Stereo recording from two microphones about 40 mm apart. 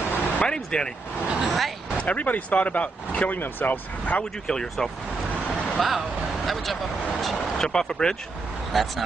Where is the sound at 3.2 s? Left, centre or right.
Left.